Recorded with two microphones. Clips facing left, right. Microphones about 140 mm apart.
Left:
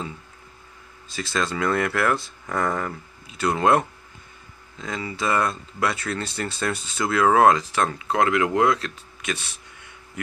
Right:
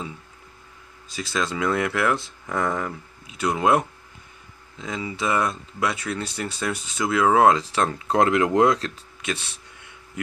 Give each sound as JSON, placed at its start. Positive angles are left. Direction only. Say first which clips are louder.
{"t": 1.1, "sound": "speech", "louder": "even", "side_deg": -15}